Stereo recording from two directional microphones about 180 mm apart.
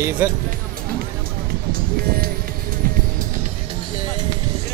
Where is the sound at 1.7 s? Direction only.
55° right (ahead or behind).